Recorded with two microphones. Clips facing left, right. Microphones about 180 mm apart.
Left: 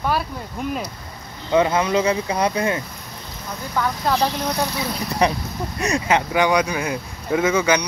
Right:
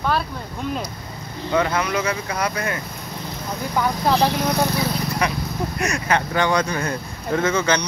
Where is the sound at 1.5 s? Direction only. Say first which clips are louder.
Left 4 dB; 25° left (ahead or behind).